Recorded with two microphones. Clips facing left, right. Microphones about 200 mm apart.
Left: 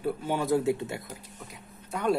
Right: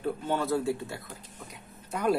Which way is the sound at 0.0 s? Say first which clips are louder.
Left 1 dB; 10° left (ahead or behind).